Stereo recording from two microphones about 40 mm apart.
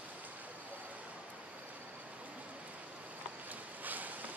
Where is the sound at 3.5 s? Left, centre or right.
Right.